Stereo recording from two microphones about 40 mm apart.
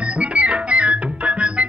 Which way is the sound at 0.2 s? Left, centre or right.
Right.